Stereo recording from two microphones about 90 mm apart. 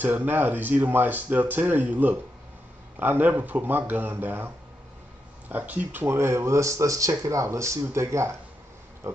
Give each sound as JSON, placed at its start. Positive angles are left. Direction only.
{"t": 0.0, "sound": "speech", "side_deg": -20}
{"t": 5.5, "sound": "speech", "side_deg": -20}